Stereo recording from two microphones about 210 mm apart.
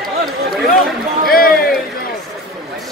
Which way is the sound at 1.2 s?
45° left (ahead or behind).